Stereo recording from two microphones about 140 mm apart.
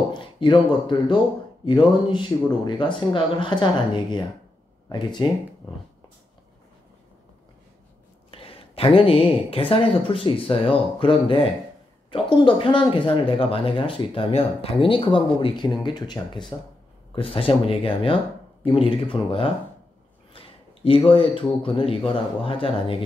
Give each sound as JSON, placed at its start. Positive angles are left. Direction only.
{"t": 0.1, "sound": "a sound", "side_deg": 35}
{"t": 0.8, "sound": "speech", "side_deg": 35}
{"t": 8.3, "sound": "speech", "side_deg": 40}